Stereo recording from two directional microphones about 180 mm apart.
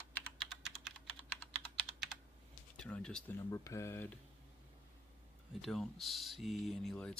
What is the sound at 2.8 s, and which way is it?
Speech, 5° left (ahead or behind).